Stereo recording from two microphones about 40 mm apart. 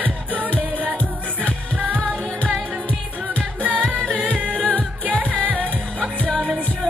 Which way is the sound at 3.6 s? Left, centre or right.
Right.